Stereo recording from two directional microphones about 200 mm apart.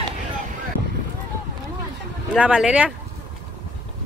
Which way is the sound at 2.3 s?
5° right (ahead or behind).